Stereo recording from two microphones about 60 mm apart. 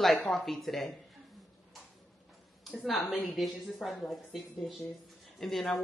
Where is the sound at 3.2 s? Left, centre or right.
Centre.